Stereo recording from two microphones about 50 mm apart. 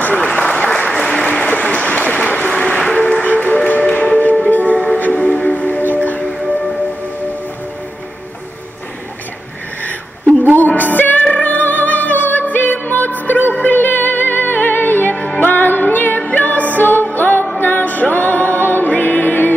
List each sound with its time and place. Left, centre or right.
0.0 s applause: left
0.9 s applause: centre
1.3 s a sound: left
2.9 s music: left
4.7 s music: left
10.6 s music: left